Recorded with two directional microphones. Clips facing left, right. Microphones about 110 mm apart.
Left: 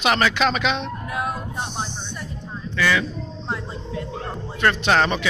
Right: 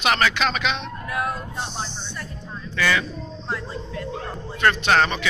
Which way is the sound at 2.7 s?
5° left (ahead or behind).